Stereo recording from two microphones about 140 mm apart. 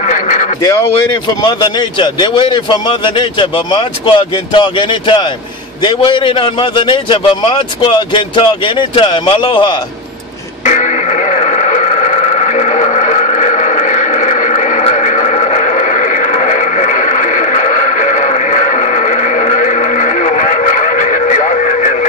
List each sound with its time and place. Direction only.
0.1 s a sound: 65° left (ahead or behind)
1.4 s a man's voice: 35° left (ahead or behind)
10.6 s radio: 60° left (ahead or behind)